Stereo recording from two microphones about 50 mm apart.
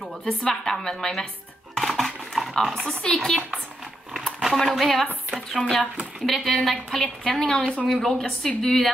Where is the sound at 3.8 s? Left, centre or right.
Centre.